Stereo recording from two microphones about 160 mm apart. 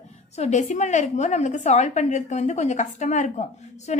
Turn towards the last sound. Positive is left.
turn(degrees=45)  # may be behind; listen again after turning